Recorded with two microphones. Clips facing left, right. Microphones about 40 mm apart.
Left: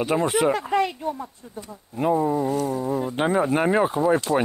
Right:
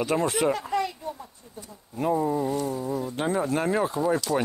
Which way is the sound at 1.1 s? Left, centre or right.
Left.